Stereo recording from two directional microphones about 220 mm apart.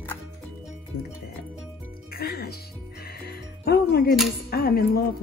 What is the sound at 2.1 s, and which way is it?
Music, 45° left (ahead or behind).